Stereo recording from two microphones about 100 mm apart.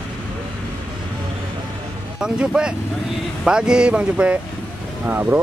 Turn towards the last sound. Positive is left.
turn(degrees=-20)  # may be behind; listen again after turning